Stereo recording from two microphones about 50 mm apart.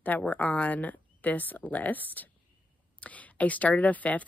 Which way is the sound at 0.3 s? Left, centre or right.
Left.